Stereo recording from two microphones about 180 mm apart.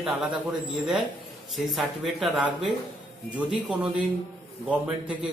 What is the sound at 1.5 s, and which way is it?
A man's voice, centre (ahead or behind).